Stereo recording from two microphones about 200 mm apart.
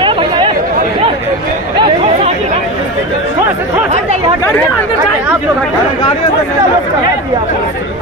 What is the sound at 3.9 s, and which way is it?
Speech, 35° right (ahead or behind).